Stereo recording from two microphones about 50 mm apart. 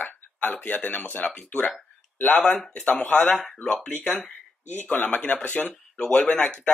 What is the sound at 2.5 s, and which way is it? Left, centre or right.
Speech, left.